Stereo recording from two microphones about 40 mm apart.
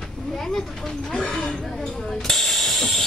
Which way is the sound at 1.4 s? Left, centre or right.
Centre.